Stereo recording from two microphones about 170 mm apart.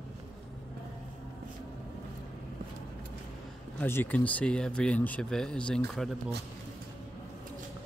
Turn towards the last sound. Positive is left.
turn(degrees=0)  # may be behind; listen again after turning